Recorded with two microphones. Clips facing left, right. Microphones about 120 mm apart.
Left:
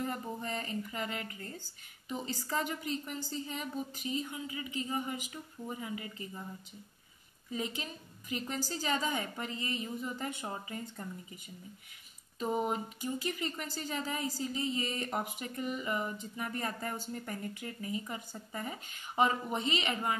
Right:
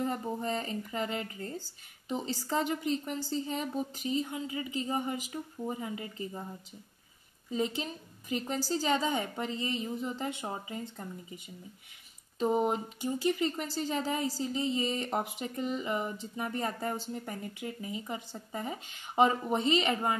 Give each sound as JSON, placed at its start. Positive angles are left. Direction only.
{"t": 0.0, "sound": "speech", "side_deg": -30}
{"t": 7.5, "sound": "speech", "side_deg": -30}